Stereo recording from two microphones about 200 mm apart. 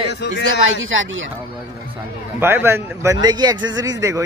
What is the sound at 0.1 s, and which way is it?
Speech, 60° left (ahead or behind).